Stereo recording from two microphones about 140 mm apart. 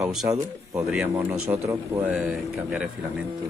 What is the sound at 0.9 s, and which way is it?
A man's voice, 5° right (ahead or behind).